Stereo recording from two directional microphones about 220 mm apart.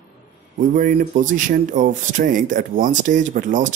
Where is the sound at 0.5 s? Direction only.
40° right (ahead or behind).